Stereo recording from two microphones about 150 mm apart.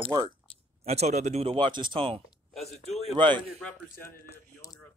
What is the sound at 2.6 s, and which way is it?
Speech, 45° left (ahead or behind).